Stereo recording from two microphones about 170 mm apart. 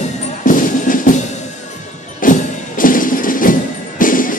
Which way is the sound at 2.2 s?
55° left (ahead or behind).